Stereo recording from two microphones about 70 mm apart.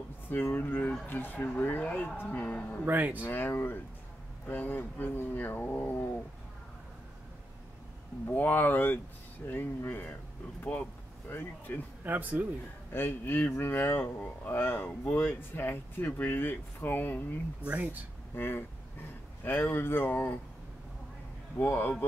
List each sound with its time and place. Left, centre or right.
0.3 s speech: left
2.8 s speech: right
3.3 s speech: left
8.3 s speech: left
12.0 s speech: right
12.9 s speech: left
17.6 s speech: right
18.3 s speech: left
21.5 s speech: left